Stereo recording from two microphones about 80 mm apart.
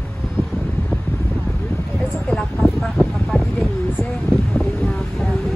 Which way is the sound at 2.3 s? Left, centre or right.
Centre.